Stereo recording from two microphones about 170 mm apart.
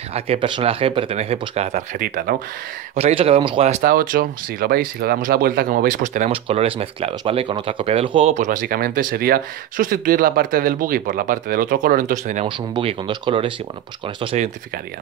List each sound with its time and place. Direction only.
0.1 s speech: 35° right (ahead or behind); by 2.3 s 55° right (ahead or behind)
3.0 s speech: 35° right (ahead or behind)
3.9 s speech: 55° right (ahead or behind)
6.3 s speech: 35° right (ahead or behind)
12.4 s speech: 30° right (ahead or behind)